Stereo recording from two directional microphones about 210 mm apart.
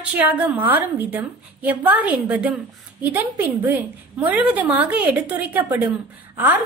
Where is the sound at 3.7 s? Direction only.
10° right (ahead or behind).